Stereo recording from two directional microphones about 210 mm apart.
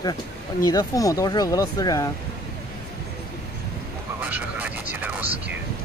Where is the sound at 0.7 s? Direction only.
15° left (ahead or behind).